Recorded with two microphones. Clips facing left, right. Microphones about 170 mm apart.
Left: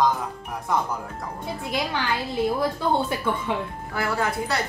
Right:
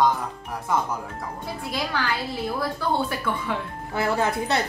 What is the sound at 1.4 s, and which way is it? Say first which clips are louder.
A woman's voice: left 2 dB; 20° left (ahead or behind).